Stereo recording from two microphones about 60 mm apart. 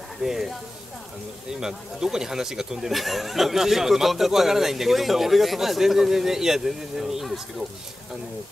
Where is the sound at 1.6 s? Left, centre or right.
Centre.